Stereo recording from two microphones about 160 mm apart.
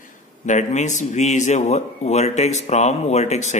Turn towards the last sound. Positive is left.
turn(degrees=45)  # may be behind; listen again after turning